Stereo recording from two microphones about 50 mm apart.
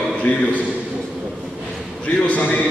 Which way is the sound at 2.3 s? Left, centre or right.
Left.